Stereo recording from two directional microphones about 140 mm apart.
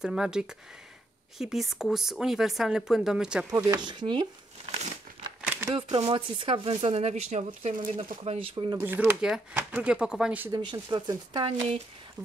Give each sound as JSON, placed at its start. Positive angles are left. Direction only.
{"t": 0.0, "sound": "speech", "side_deg": -5}
{"t": 3.4, "sound": "speech", "side_deg": -25}
{"t": 5.4, "sound": "a sound", "side_deg": -15}
{"t": 5.8, "sound": "speech", "side_deg": -40}
{"t": 7.9, "sound": "speech", "side_deg": -40}
{"t": 8.7, "sound": "speech", "side_deg": -15}
{"t": 10.5, "sound": "speech", "side_deg": -30}